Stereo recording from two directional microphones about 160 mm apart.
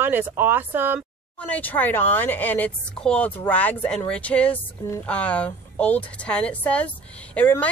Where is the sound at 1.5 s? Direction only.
10° left (ahead or behind).